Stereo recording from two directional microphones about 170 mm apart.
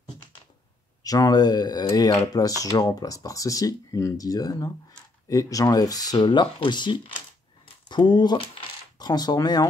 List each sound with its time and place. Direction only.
1.0 s speech: 20° left (ahead or behind)